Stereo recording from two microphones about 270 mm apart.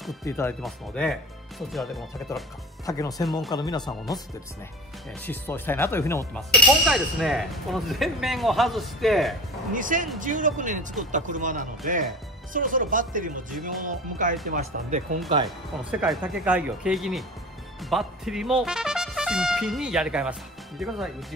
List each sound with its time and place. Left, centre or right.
0.2 s a man's voice: centre
2.8 s speech: centre
3.3 s a man's voice: centre
3.5 s speech: centre
5.2 s a man's voice: centre
9.8 s speech: right
15.4 s a man's voice: centre